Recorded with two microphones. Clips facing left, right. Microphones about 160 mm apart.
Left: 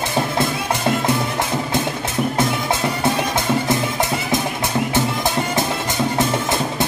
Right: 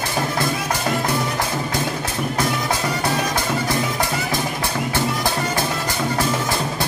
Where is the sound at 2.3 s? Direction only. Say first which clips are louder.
Left 2 dB; 25° left (ahead or behind).